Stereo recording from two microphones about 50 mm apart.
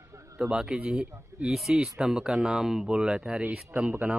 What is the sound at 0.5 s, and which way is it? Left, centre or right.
Speech, centre.